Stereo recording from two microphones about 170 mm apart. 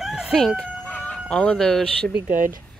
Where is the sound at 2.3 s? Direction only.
50° right (ahead or behind).